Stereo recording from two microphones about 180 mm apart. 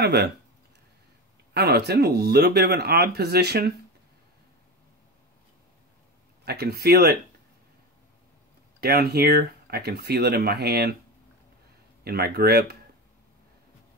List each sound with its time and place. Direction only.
0.0 s speech: 65° right (ahead or behind)
1.5 s speech: 65° right (ahead or behind)
6.4 s speech: 65° right (ahead or behind)
8.8 s speech: 60° right (ahead or behind)
12.0 s speech: 60° right (ahead or behind)